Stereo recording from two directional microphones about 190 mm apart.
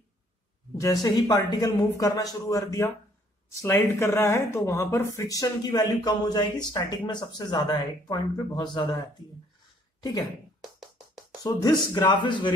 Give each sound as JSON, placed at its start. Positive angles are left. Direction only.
{"t": 0.7, "sound": "a woman's voice", "side_deg": 20}
{"t": 9.9, "sound": "a sound", "side_deg": 20}
{"t": 11.4, "sound": "speech", "side_deg": 20}